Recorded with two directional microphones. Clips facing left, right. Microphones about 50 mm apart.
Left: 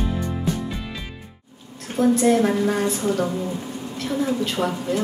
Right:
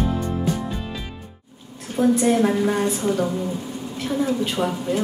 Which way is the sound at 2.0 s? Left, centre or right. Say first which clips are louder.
Even; centre.